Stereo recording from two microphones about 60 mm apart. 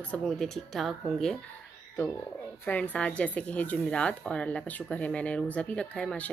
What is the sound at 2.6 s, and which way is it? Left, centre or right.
A woman's voice, left.